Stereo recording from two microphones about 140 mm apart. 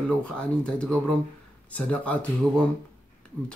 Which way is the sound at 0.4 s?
5° left (ahead or behind).